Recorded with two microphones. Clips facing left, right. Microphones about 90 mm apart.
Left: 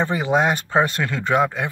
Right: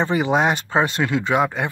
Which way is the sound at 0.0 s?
20° right (ahead or behind).